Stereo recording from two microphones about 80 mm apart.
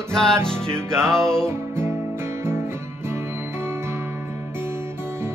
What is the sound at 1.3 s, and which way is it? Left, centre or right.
Music, centre.